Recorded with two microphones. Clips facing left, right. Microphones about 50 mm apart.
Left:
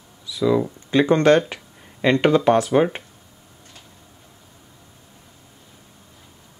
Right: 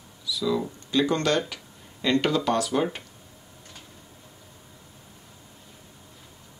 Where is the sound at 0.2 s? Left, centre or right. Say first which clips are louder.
Left 7 dB; left.